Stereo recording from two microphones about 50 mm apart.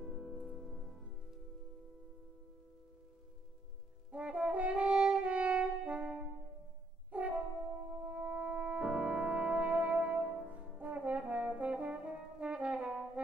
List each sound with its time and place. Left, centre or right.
0.0 s music: centre
4.1 s brass instrument: right
8.0 s french horn: right
8.8 s music: centre
10.8 s brass instrument: right